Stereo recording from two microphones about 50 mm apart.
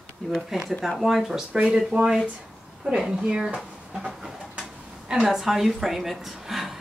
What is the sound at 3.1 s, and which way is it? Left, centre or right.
Speech, centre.